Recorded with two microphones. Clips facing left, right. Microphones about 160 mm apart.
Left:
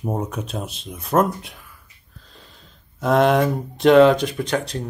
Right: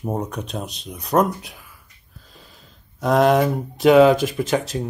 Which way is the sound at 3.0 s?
Centre (ahead or behind).